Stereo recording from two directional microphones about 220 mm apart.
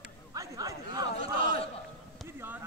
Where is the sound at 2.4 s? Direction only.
10° right (ahead or behind).